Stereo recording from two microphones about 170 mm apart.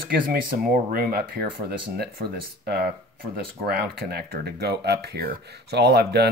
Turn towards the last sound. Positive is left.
turn(degrees=-70)  # may be behind; listen again after turning